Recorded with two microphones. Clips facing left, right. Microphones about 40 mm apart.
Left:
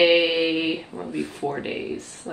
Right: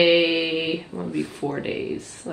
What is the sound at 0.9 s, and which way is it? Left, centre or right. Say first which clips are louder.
Speech: right 2 dB; centre.